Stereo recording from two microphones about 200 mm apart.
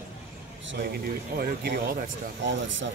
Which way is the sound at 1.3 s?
50° right (ahead or behind).